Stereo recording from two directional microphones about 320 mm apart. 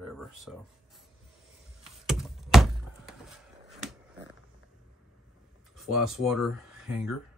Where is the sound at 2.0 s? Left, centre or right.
Centre.